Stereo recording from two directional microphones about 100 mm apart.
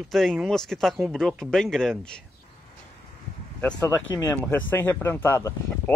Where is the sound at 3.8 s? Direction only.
25° left (ahead or behind).